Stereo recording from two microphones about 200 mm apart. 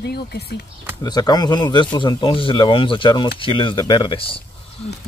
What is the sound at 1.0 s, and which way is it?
Speech, 20° left (ahead or behind).